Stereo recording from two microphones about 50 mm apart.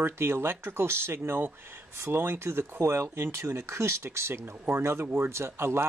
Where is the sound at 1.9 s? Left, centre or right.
Right.